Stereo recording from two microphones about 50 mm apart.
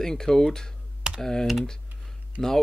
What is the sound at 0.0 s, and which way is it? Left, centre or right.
Speech, centre.